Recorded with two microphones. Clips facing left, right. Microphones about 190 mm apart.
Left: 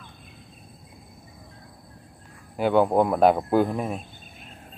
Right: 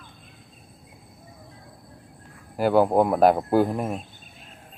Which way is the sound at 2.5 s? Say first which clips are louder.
Right 1 dB; 5° right (ahead or behind).